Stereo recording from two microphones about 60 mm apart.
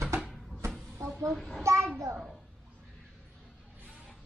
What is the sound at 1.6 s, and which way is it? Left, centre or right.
Child singing, right.